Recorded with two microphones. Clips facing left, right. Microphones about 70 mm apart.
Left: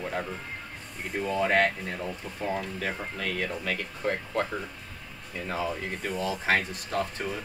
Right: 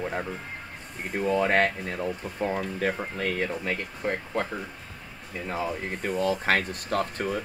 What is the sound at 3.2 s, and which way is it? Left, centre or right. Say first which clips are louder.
Speech: right 3 dB; right.